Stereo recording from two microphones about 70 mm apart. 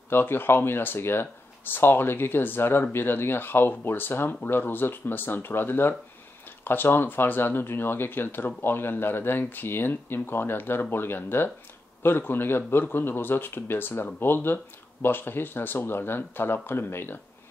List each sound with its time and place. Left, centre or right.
0.1 s speech: left